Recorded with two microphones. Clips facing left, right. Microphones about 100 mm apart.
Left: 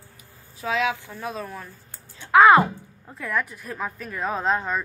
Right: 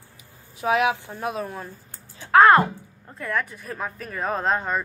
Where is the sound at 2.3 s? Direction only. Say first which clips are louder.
Even; 5° left (ahead or behind).